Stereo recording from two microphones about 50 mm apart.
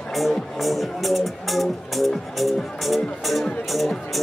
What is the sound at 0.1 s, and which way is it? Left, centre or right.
Music, centre.